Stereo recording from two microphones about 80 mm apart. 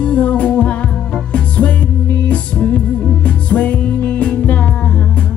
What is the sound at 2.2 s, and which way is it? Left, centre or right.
Music, centre.